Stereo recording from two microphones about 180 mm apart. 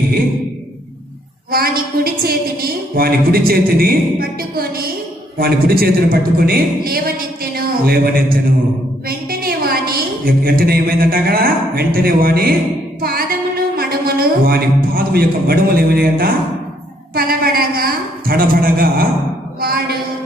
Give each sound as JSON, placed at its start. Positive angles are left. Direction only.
{"t": 1.5, "sound": "a woman's voice", "side_deg": -55}
{"t": 9.3, "sound": "a woman's voice", "side_deg": -55}
{"t": 13.7, "sound": "a sound", "side_deg": -55}
{"t": 17.1, "sound": "a woman's voice", "side_deg": -55}